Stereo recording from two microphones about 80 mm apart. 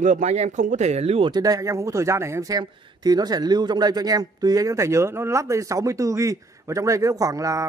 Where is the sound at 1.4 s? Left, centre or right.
Right.